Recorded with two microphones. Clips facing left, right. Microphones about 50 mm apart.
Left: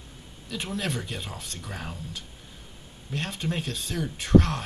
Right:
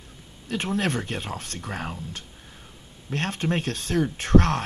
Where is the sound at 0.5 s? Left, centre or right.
Right.